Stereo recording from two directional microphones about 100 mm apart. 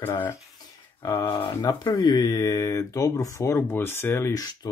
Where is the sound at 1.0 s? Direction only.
20° left (ahead or behind).